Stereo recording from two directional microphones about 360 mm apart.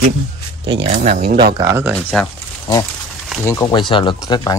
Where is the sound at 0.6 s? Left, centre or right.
Centre.